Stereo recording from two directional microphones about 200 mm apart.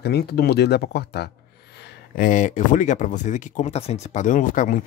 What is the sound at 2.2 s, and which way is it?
Speech, 40° left (ahead or behind).